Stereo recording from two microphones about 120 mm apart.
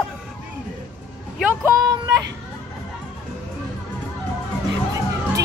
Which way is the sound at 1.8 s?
35° right (ahead or behind).